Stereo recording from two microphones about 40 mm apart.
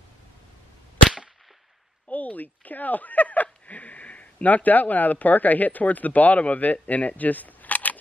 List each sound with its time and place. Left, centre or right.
2.0 s speech: left